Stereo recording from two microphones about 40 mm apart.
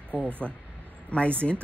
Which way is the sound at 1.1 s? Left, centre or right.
Left.